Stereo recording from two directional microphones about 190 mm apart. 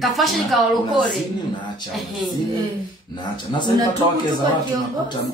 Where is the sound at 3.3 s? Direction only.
25° left (ahead or behind).